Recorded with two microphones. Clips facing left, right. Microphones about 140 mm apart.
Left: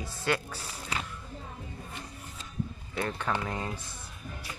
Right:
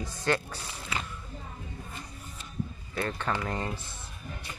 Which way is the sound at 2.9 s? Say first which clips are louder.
Even; 15° left (ahead or behind).